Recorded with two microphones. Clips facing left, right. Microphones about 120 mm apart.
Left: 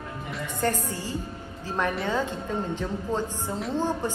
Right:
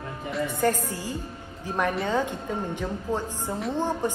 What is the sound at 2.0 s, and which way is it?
A man's voice, 15° right (ahead or behind).